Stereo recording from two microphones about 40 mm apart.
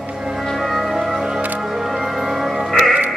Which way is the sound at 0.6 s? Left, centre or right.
Centre.